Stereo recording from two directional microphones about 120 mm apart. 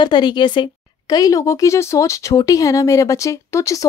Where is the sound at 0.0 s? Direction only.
40° left (ahead or behind).